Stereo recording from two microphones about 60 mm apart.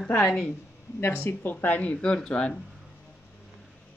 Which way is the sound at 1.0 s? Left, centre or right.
Left.